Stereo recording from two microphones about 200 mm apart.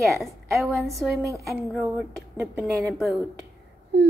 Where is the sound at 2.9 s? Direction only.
Centre (ahead or behind).